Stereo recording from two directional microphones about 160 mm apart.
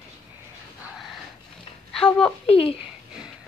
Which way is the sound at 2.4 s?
35° left (ahead or behind).